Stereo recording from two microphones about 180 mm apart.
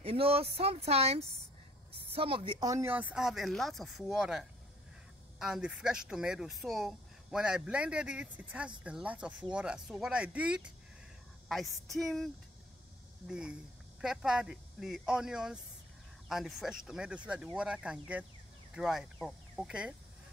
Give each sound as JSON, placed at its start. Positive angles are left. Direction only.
{"t": 0.0, "sound": "speech", "side_deg": -30}
{"t": 13.3, "sound": "speech", "side_deg": -5}